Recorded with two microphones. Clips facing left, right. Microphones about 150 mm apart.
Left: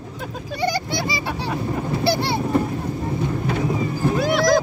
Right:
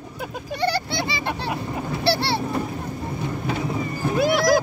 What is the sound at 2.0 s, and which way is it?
Boat, 15° left (ahead or behind).